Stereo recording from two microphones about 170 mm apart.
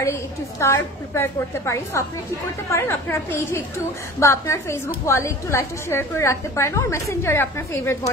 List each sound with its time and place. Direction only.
0.0 s a woman's voice: 15° left (ahead or behind)